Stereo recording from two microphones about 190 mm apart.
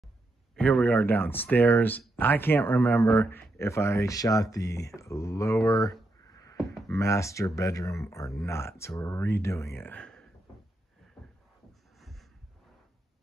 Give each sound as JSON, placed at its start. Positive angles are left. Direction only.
{"t": 0.6, "sound": "speech", "side_deg": 10}
{"t": 6.5, "sound": "a sound", "side_deg": 0}
{"t": 6.9, "sound": "speech", "side_deg": 15}
{"t": 12.0, "sound": "heart sounds", "side_deg": 0}